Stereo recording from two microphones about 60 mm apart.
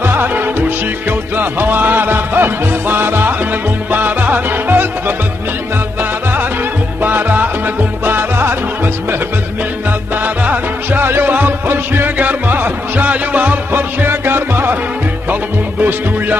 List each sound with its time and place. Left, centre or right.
0.0 s music: right
7.0 s music: right
10.2 s music: right